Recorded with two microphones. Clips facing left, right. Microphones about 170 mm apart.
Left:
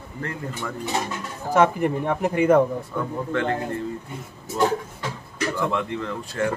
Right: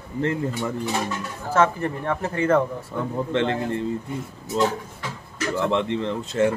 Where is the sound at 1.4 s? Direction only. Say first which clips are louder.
Left 2 dB; 15° left (ahead or behind).